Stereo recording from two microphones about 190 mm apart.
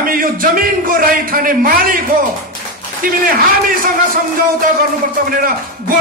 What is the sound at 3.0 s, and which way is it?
Speech, 50° right (ahead or behind).